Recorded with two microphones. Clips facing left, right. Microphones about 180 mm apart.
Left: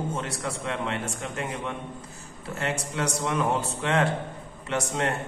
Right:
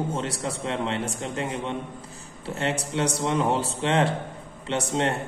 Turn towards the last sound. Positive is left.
turn(degrees=-30)  # may be behind; listen again after turning